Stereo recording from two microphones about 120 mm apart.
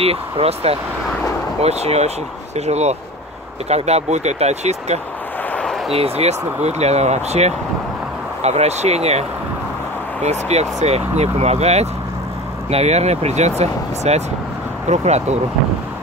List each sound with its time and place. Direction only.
0.0 s speech: 55° right (ahead or behind)
5.5 s a sound: 5° left (ahead or behind)
5.9 s speech: 60° right (ahead or behind)
10.2 s speech: 65° right (ahead or behind)